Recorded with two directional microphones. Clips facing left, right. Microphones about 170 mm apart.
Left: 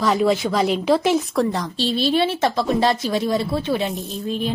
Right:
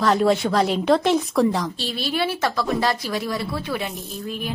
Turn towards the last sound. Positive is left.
turn(degrees=25)  # may be behind; listen again after turning